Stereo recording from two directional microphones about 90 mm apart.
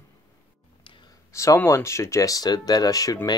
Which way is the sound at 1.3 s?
35° left (ahead or behind).